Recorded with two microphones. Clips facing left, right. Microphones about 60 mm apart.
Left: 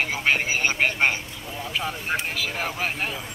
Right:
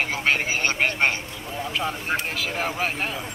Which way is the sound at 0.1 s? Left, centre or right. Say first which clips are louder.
Even; centre.